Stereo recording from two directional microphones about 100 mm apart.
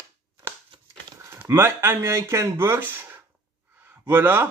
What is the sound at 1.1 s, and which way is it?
Speech, 25° right (ahead or behind).